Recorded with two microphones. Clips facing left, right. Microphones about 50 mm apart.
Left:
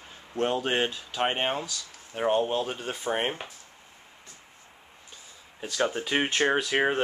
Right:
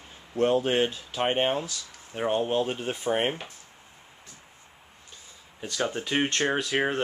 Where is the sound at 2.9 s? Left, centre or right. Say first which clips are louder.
Right 1 dB; centre.